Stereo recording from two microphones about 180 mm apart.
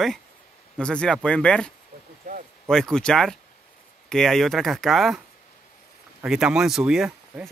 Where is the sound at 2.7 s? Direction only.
5° left (ahead or behind).